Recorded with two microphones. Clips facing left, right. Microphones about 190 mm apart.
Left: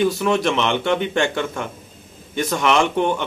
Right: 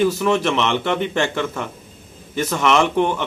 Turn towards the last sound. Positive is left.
turn(degrees=0)  # may be behind; listen again after turning